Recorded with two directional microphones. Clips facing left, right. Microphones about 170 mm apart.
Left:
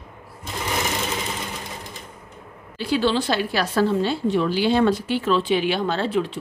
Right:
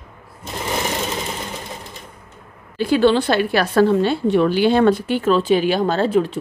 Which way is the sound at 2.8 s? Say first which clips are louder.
Right 6 dB; 55° right (ahead or behind).